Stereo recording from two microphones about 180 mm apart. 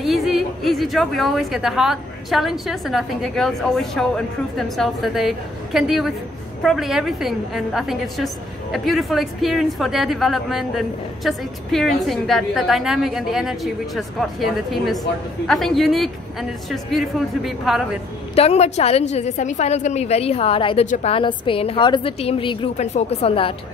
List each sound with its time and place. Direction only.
0.0 s a woman's voice: centre (ahead or behind)
18.3 s a woman's voice: 35° left (ahead or behind)